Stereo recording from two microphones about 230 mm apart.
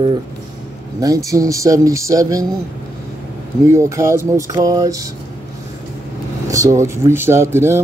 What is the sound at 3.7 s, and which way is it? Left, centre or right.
Speech, centre.